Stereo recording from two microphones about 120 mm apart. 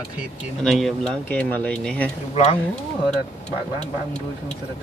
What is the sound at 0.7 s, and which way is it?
Speech, centre (ahead or behind).